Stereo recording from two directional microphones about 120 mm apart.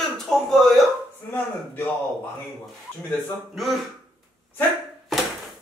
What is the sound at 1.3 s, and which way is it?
Speech, 15° left (ahead or behind).